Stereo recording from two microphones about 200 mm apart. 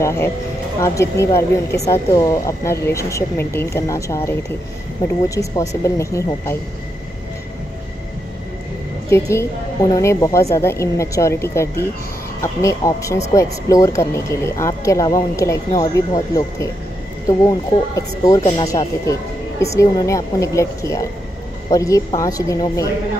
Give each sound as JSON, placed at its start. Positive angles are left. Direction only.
{"t": 0.0, "sound": "speech", "side_deg": 15}
{"t": 9.1, "sound": "speech", "side_deg": 15}